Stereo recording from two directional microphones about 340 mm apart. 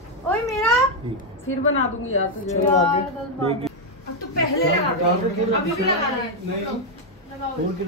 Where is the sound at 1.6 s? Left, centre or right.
Left.